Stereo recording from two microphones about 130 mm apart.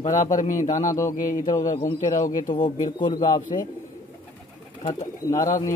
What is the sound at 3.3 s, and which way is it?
Speech, 30° left (ahead or behind).